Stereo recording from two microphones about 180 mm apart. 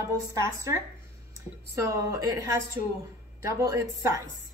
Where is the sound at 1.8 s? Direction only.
15° right (ahead or behind).